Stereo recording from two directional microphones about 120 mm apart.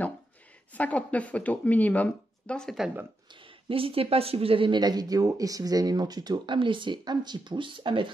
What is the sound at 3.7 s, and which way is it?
Speech, 50° right (ahead or behind).